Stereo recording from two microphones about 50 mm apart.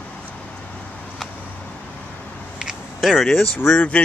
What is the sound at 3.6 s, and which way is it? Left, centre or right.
Speech, left.